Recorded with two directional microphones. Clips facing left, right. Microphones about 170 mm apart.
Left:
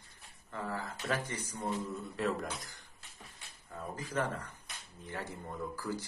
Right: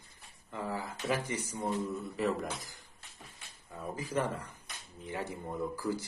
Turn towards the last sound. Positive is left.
turn(degrees=-10)  # may be behind; listen again after turning